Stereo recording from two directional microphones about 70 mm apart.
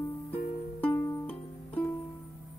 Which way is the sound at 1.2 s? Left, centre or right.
Left.